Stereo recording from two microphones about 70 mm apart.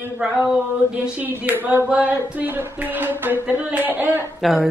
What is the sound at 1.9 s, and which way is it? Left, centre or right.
Speech, centre.